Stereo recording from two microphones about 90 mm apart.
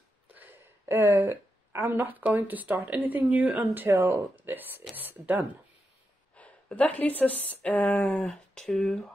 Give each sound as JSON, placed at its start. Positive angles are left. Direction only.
{"t": 0.3, "sound": "a woman's voice", "side_deg": -20}
{"t": 6.3, "sound": "speech", "side_deg": 15}